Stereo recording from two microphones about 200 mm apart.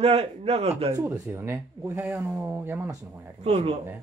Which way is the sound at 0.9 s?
15° right (ahead or behind).